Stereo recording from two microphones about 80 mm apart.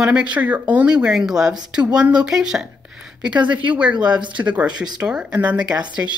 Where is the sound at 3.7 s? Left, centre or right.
Centre.